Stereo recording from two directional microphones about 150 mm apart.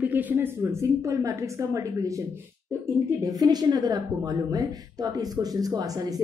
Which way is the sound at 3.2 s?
25° right (ahead or behind).